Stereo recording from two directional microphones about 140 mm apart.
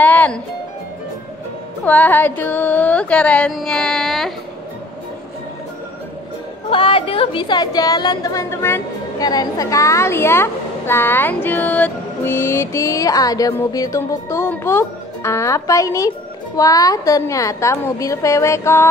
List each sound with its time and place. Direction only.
0.0 s music: 10° left (ahead or behind)
1.9 s music: 10° left (ahead or behind)
6.7 s a woman's voice: 35° left (ahead or behind); by 18.9 s 20° left (ahead or behind)